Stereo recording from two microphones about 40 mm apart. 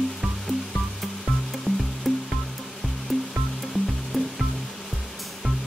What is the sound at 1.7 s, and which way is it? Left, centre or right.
Music, centre.